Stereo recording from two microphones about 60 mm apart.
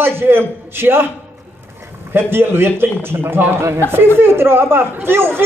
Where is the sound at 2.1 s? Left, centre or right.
Right.